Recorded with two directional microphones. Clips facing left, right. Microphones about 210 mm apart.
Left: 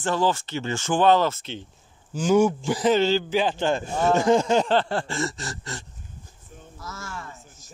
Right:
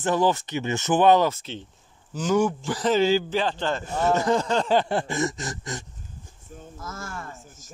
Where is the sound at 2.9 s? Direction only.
10° right (ahead or behind).